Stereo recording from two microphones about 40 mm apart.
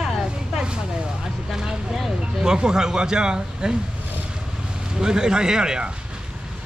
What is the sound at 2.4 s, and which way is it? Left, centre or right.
Speech, centre.